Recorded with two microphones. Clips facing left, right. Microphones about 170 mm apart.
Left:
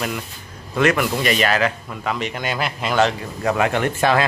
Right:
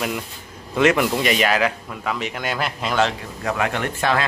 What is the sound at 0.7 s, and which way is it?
Speech, 20° right (ahead or behind).